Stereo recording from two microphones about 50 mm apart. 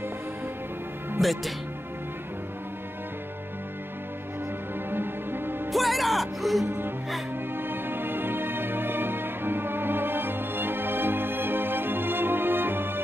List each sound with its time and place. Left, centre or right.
1.2 s speech: centre
4.9 s music: right
5.7 s music: centre
7.5 s music: right